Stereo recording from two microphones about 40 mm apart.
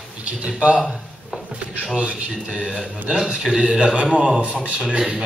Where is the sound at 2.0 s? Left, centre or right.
Right.